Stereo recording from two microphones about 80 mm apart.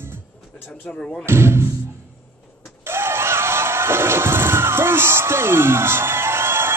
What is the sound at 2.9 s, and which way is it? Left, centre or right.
Music, right.